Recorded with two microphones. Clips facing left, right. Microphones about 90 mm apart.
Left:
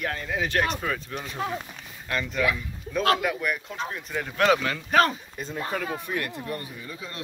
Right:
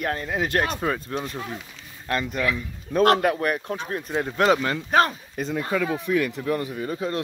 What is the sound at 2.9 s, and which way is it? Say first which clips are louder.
Speech: right 5 dB; 45° right (ahead or behind).